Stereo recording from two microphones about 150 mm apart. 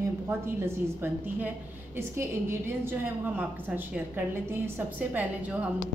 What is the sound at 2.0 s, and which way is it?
A woman's voice, 15° right (ahead or behind).